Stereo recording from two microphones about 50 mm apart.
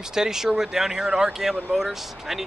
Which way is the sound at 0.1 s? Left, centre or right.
Centre.